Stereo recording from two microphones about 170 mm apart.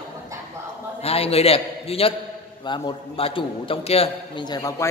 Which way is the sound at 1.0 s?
35° left (ahead or behind).